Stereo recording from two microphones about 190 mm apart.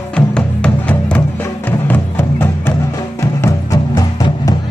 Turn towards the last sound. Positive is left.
turn(degrees=20)  # may be behind; listen again after turning